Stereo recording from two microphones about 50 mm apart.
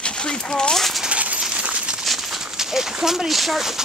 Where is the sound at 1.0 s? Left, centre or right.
Right.